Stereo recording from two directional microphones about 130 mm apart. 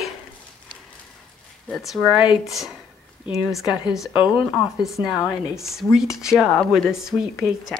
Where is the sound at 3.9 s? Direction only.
5° right (ahead or behind).